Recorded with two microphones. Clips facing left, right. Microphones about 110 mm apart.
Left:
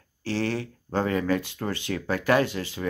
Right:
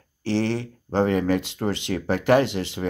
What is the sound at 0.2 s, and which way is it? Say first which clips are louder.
Speech: right 4 dB; 20° right (ahead or behind).